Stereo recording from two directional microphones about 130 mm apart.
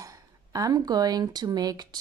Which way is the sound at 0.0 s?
25° right (ahead or behind).